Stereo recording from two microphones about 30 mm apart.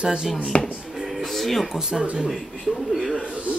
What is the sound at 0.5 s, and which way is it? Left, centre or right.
Chopping, left.